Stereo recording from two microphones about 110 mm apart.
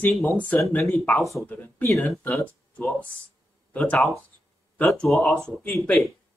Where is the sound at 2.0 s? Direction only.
5° left (ahead or behind).